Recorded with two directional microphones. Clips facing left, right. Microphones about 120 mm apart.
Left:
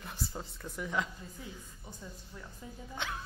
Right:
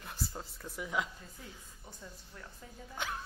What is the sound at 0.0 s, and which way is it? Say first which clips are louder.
A woman's voice: left 1 dB; centre (ahead or behind).